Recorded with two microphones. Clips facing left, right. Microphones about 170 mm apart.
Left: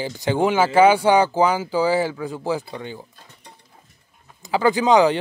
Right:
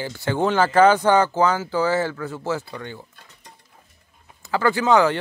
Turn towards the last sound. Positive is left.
turn(degrees=15)  # may be behind; listen again after turning